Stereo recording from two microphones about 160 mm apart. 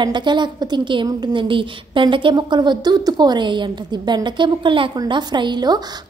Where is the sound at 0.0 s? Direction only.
30° right (ahead or behind).